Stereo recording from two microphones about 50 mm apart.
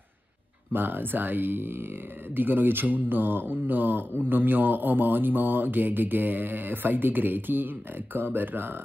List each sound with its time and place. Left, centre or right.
0.7 s speech: right